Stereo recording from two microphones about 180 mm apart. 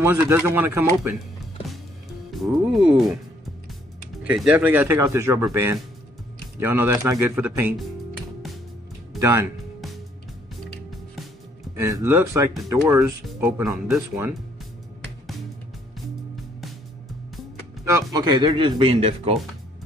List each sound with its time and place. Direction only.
0.0 s speech: 15° right (ahead or behind)
2.3 s speech: centre (ahead or behind)
4.2 s speech: 5° right (ahead or behind)
9.2 s speech: 15° right (ahead or behind)
11.7 s speech: 15° right (ahead or behind)
17.8 s speech: 20° right (ahead or behind)